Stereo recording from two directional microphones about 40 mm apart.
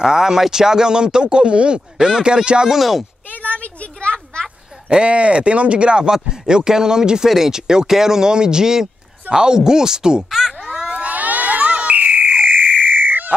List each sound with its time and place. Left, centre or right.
0.0 s speech: centre
2.0 s speech: centre
2.7 s speech: centre
3.3 s a sound: left
4.8 s speech: right
10.3 s a sound: centre
10.9 s crowd: right
12.8 s frog: right